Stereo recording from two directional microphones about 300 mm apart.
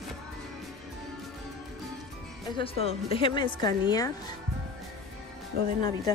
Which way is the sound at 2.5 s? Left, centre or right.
Centre.